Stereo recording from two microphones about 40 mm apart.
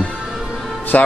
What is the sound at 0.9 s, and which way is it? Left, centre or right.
Speech, left.